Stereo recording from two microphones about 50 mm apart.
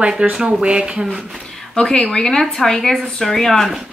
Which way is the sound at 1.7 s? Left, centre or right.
Centre.